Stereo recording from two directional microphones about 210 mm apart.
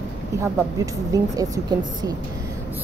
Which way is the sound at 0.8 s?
15° right (ahead or behind).